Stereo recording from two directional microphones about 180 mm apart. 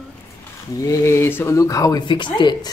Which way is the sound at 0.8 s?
15° left (ahead or behind).